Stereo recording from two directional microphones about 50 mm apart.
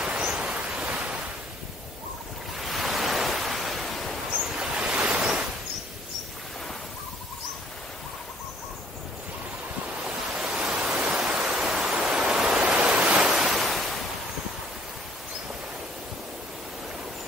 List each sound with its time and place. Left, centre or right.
0.0 s a sound: centre
0.8 s waves: right
2.6 s waves: centre
4.6 s waves: right
10.3 s pink noise: centre
11.9 s a sound: centre
12.6 s waves: right
13.3 s waves: centre